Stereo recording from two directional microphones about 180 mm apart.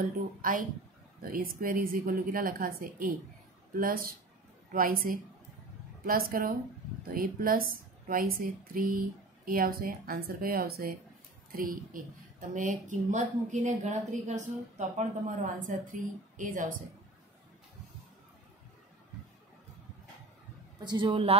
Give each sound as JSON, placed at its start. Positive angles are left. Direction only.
{"t": 0.4, "sound": "speech", "side_deg": -50}
{"t": 20.8, "sound": "a woman's voice", "side_deg": -25}